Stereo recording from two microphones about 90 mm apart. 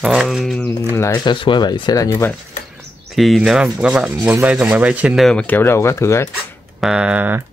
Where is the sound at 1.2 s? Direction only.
65° left (ahead or behind); by 2.2 s 40° left (ahead or behind).